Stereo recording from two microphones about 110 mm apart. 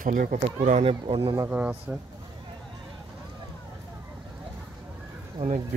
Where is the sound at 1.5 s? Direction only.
15° right (ahead or behind).